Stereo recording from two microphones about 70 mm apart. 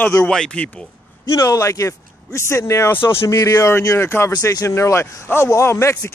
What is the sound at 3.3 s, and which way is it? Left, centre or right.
Speech, left.